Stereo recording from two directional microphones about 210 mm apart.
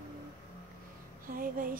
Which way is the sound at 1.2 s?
40° right (ahead or behind).